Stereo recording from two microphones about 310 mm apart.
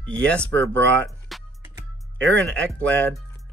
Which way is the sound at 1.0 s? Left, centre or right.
Centre.